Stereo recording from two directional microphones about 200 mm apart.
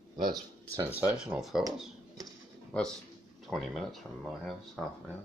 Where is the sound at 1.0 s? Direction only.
5° right (ahead or behind).